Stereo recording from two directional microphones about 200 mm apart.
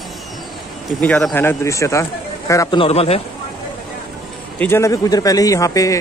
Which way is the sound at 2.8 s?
30° left (ahead or behind).